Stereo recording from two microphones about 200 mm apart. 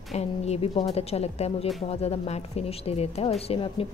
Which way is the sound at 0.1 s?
30° left (ahead or behind).